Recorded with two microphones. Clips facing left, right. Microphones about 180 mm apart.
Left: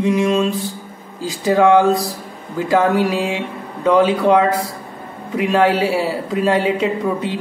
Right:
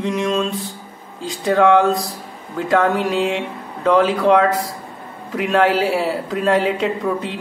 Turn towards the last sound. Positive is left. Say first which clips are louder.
# left 2 dB
turn(degrees=0)  # may be behind; listen again after turning